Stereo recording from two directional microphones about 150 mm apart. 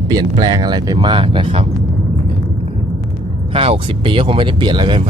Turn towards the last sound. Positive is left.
turn(degrees=-35)  # may be behind; listen again after turning